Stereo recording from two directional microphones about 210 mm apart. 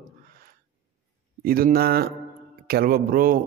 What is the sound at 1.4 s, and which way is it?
Speech, 45° right (ahead or behind).